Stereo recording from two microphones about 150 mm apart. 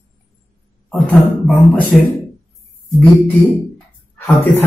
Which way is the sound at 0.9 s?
Centre (ahead or behind).